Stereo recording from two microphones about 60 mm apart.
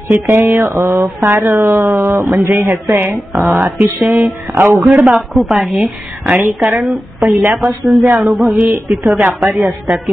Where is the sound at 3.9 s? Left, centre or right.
Right.